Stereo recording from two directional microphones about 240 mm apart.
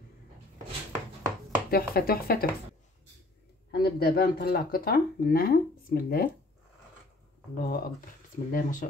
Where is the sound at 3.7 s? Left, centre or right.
Left.